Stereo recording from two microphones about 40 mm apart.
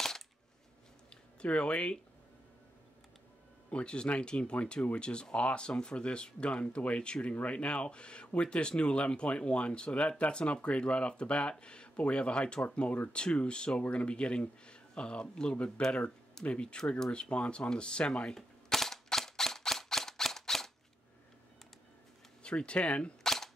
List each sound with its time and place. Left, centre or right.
1.1 s a sound: left
3.7 s speech: left
18.7 s cap gun: centre
22.4 s speech: left
23.2 s cap gun: centre